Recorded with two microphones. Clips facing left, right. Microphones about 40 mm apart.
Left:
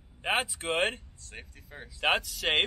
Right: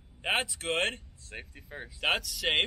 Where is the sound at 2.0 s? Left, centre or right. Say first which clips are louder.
Left 2 dB; centre.